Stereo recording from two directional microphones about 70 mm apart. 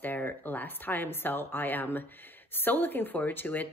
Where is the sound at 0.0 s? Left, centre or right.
Left.